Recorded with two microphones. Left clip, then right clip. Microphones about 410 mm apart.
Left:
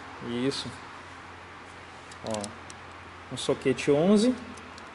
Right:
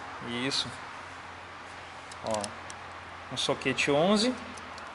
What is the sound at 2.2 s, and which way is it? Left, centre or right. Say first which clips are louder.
Speech: right 2 dB; centre.